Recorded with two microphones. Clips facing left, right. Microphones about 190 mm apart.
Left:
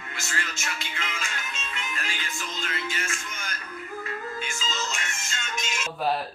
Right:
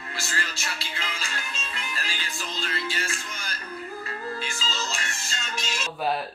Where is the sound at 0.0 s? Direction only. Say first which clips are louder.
Right 1 dB; 35° right (ahead or behind).